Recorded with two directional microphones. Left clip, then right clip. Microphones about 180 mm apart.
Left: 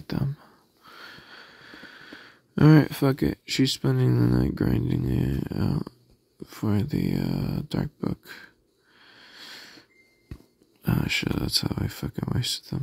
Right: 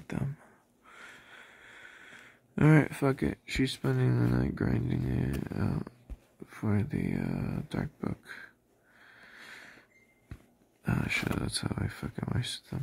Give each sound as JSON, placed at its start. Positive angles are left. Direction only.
{"t": 0.0, "sound": "speech", "side_deg": 30}
{"t": 7.7, "sound": "a sound", "side_deg": 35}
{"t": 10.8, "sound": "speech", "side_deg": 35}